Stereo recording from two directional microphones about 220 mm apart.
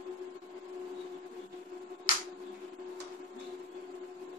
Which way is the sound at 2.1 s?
40° left (ahead or behind).